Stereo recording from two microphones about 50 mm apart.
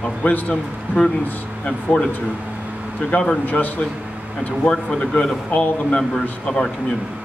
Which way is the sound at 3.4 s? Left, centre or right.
Left.